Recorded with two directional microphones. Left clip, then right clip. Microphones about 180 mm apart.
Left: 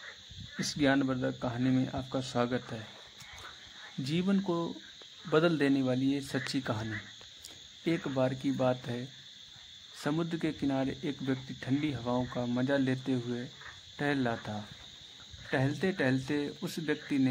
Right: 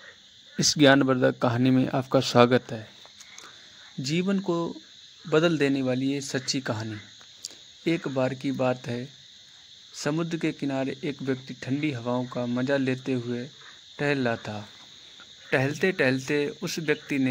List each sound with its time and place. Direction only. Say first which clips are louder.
0.6 s speech: right 10 dB; 40° right (ahead or behind)
4.0 s speech: right 5 dB; 15° right (ahead or behind)